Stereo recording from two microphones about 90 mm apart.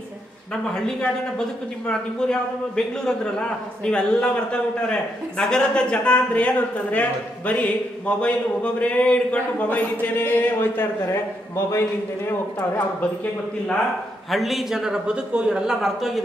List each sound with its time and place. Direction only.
1.9 s a man's voice: 10° left (ahead or behind)
14.3 s a man's voice: centre (ahead or behind)